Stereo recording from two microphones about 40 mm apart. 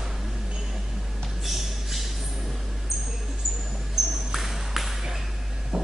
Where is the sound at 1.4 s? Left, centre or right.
Centre.